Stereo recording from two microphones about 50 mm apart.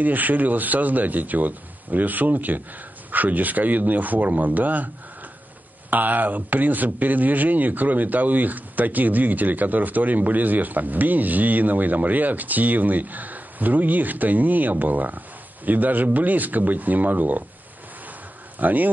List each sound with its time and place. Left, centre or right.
0.0 s a man's voice: right
18.6 s a man's voice: right